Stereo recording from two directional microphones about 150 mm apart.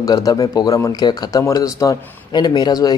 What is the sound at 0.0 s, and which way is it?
Speech, 25° left (ahead or behind).